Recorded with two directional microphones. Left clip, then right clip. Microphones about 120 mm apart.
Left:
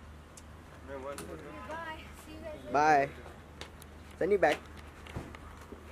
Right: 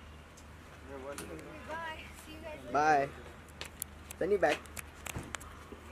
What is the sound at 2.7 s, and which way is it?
Speech, 10° left (ahead or behind).